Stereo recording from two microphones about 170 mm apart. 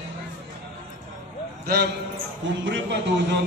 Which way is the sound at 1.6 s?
70° right (ahead or behind).